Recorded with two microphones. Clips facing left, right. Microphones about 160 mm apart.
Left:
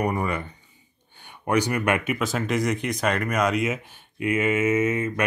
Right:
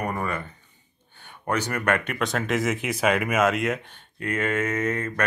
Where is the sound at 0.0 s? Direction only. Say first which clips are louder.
Left 3 dB; 15° left (ahead or behind).